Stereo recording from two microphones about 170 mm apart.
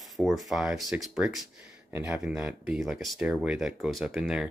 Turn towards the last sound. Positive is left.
turn(degrees=0)  # may be behind; listen again after turning